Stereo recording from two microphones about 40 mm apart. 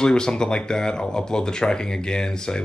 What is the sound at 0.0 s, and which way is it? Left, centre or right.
Speech, centre.